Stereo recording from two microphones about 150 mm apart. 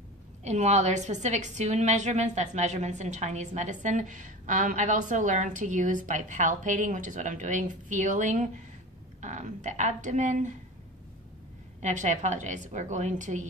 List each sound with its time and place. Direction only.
0.4 s a woman's voice: 50° right (ahead or behind)
11.8 s a woman's voice: 55° right (ahead or behind)